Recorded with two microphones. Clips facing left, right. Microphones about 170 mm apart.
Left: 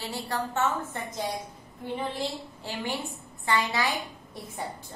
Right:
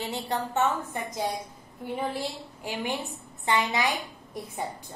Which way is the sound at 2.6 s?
15° right (ahead or behind).